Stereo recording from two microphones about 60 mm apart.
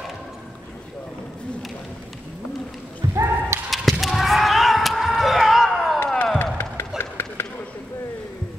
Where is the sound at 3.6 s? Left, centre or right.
Centre.